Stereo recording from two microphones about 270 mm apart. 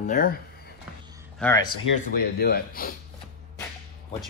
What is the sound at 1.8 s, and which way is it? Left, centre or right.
Speech, left.